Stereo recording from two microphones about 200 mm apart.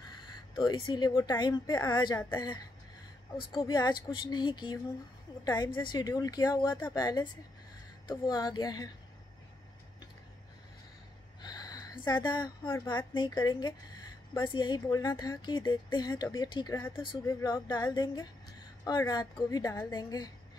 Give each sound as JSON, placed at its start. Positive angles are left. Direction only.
{"t": 0.6, "sound": "speech", "side_deg": 25}
{"t": 11.4, "sound": "speech", "side_deg": 20}